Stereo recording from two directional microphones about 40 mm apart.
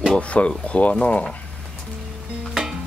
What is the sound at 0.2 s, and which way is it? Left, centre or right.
Speech, left.